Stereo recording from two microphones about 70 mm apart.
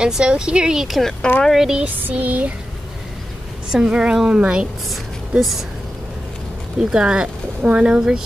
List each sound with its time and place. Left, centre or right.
0.0 s speech: centre
2.0 s a sound: right
3.7 s speech: centre
5.4 s speech: centre
6.8 s speech: centre